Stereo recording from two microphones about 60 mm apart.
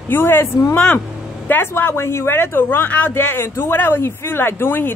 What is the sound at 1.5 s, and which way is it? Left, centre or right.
Speech, left.